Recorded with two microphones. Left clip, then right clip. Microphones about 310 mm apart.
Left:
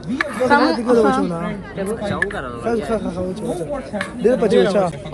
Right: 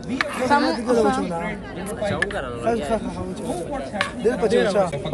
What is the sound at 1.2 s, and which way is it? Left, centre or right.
Speech, centre.